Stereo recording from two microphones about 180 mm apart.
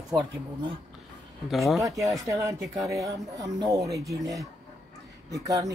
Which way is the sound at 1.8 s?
15° right (ahead or behind).